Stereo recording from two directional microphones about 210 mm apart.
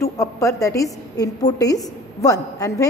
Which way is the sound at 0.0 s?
15° left (ahead or behind).